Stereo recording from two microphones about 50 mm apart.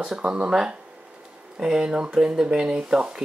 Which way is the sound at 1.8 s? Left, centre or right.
Right.